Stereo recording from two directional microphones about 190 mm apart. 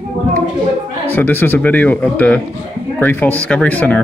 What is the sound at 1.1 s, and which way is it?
Speech, 10° left (ahead or behind).